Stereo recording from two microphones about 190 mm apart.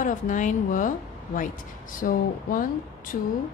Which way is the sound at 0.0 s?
45° left (ahead or behind).